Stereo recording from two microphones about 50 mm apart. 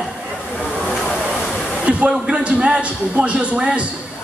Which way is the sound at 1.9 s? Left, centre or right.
Right.